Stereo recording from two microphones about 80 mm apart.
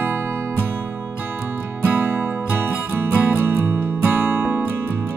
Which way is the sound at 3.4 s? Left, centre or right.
Right.